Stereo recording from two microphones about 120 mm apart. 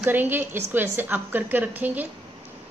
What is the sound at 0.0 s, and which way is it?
A woman's voice, 15° right (ahead or behind).